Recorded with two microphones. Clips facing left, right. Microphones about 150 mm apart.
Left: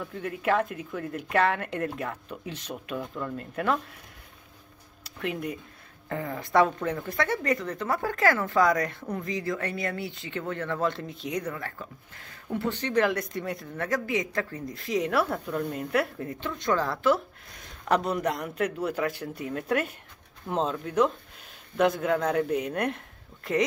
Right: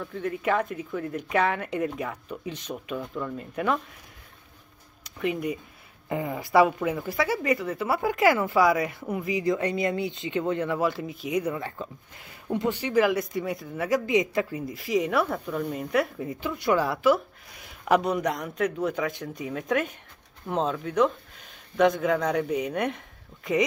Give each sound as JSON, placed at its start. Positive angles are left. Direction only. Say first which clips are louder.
{"t": 0.0, "sound": "a woman's voice", "louder": "right 2 dB", "side_deg": 0}
{"t": 5.2, "sound": "a woman's voice", "louder": "right 4 dB", "side_deg": 0}
{"t": 6.0, "sound": "speech", "louder": "right 3 dB", "side_deg": -15}
{"t": 8.6, "sound": "a woman's voice", "louder": "right 2 dB", "side_deg": -5}
{"t": 9.3, "sound": "speech", "louder": "right 7 dB", "side_deg": -15}
{"t": 11.5, "sound": "speech", "louder": "right 4 dB", "side_deg": -20}
{"t": 13.8, "sound": "a woman's voice", "louder": "right 5 dB", "side_deg": -20}